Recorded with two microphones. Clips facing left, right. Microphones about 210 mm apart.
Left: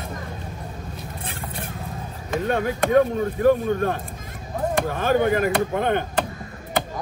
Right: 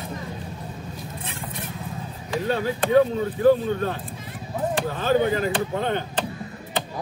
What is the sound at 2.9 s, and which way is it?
Speech, 50° left (ahead or behind).